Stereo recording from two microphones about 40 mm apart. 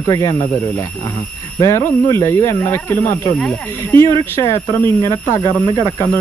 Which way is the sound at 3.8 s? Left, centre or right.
Left.